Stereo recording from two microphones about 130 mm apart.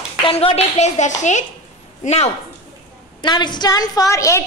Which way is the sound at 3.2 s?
35° left (ahead or behind).